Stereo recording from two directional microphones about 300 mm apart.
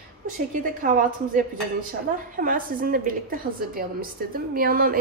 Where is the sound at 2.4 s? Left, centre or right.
Right.